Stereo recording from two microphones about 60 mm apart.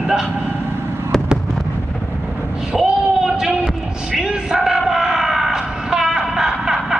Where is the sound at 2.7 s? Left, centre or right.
Centre.